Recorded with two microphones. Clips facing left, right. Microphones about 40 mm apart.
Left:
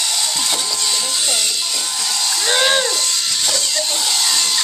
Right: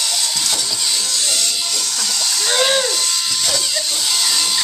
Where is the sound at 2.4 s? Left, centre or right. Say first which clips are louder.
Left 1 dB; centre.